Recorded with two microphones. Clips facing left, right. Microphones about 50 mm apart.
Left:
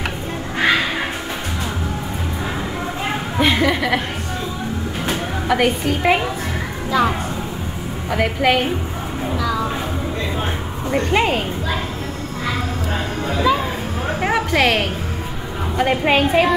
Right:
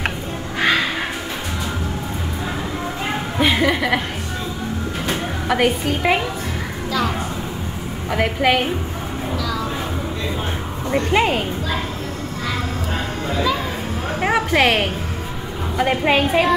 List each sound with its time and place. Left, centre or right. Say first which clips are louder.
3.3 s speech: left 1 dB; centre
5.5 s a woman's voice: left 1 dB; centre
6.9 s speech: left 4 dB; left
8.1 s a woman's voice: even; centre
9.4 s a sound: left 5 dB; centre
11.1 s a woman's voice: even; centre
13.3 s a sound: left 3 dB; centre
14.2 s a sound: right 1 dB; centre
15.8 s a woman's voice: left 1 dB; centre